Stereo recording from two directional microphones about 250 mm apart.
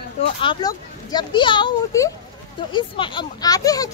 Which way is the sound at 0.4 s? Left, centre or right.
Centre.